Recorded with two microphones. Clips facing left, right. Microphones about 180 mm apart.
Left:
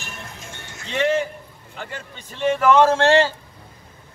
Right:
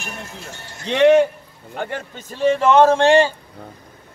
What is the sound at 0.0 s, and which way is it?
Run, 40° right (ahead or behind).